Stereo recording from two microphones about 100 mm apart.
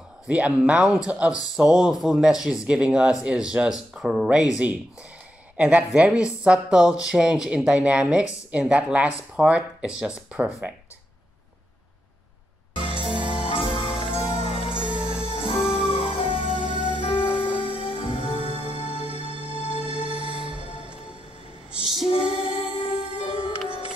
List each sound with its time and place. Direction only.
0.3 s speech: 10° right (ahead or behind)
5.6 s speech: 10° right (ahead or behind)
12.7 s music: 60° left (ahead or behind)
22.1 s music: 65° left (ahead or behind)